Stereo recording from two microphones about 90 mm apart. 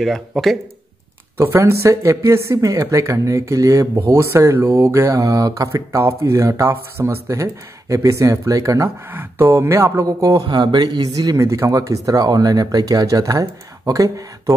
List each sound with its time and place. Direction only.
0.0 s speech: centre (ahead or behind)
1.4 s speech: 30° right (ahead or behind)
9.1 s speech: 25° right (ahead or behind)
10.5 s speech: 55° right (ahead or behind)